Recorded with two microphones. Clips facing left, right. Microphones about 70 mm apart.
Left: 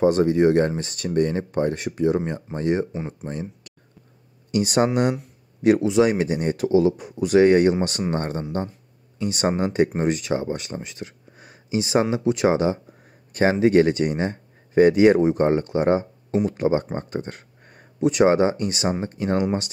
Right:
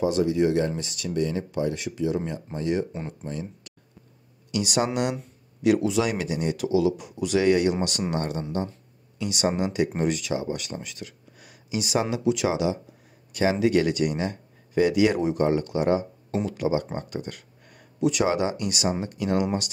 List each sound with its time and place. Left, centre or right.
0.0 s speech: left